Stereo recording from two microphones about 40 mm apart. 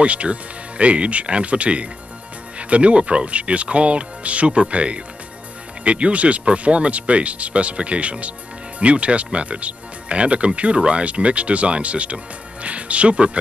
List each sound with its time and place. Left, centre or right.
0.0 s speech: right